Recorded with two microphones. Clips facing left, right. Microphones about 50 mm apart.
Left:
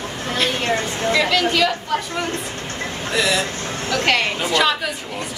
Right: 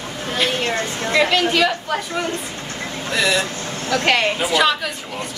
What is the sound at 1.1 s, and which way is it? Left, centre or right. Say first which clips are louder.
Speech: right 1 dB; centre.